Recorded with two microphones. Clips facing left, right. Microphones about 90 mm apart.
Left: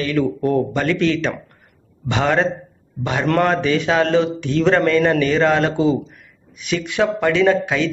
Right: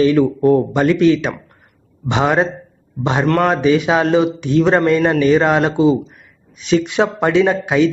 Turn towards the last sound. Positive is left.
turn(degrees=-20)  # may be behind; listen again after turning